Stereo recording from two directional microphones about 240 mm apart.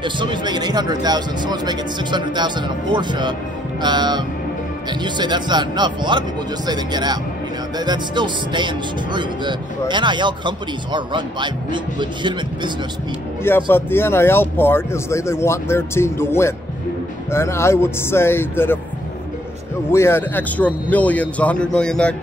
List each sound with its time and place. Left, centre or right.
0.0 s speech: centre
13.4 s speech: centre
19.9 s speech: centre